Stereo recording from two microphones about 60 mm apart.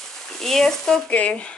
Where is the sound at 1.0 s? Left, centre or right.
Left.